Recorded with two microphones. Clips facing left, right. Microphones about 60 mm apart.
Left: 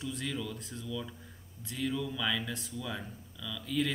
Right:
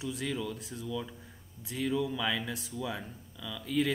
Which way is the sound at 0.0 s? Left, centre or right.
Centre.